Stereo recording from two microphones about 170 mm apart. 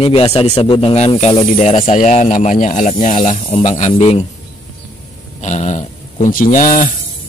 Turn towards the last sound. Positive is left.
turn(degrees=50)  # may be behind; listen again after turning